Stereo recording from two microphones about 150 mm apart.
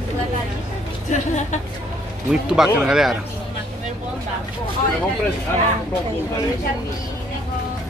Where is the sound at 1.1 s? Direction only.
55° left (ahead or behind).